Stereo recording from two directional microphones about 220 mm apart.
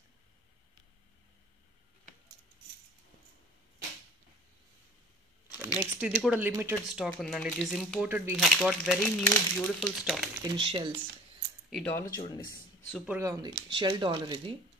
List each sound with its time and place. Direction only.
5.5 s speech: 10° right (ahead or behind)
10.4 s speech: 20° right (ahead or behind)
11.7 s speech: 5° left (ahead or behind)
12.9 s speech: centre (ahead or behind)
13.2 s speech: 15° right (ahead or behind)